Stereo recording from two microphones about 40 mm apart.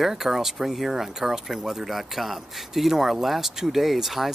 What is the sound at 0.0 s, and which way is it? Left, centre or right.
Speech, centre.